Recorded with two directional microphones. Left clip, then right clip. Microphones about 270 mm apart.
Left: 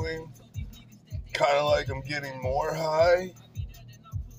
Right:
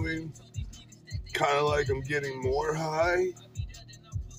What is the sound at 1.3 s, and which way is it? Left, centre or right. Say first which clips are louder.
Speech: left 3 dB; centre.